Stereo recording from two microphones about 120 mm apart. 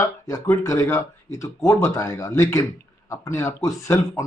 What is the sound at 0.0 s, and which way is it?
A man's voice, 25° left (ahead or behind).